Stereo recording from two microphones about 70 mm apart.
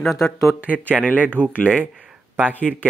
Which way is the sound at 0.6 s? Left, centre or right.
Right.